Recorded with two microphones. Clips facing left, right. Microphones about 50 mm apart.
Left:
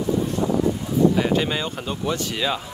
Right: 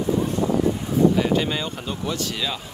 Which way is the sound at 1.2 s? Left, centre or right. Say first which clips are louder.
Even; centre.